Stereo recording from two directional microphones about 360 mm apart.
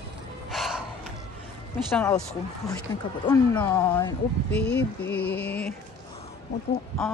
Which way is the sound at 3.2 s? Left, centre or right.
Centre.